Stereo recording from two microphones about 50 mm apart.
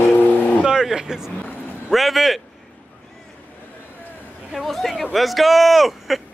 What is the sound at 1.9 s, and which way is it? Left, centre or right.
Speech, centre.